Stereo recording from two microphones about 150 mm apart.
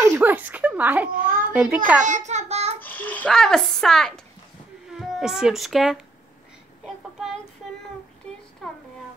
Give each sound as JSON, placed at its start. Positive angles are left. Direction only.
{"t": 0.0, "sound": "a child's voice", "side_deg": -15}
{"t": 2.0, "sound": "child singing", "side_deg": -55}
{"t": 2.8, "sound": "a child's voice", "side_deg": 10}
{"t": 8.3, "sound": "a sound", "side_deg": 5}